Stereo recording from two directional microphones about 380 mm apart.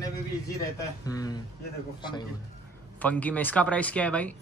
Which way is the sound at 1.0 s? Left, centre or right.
Centre.